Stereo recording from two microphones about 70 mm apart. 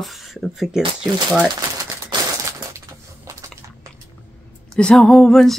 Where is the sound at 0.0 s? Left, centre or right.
Centre.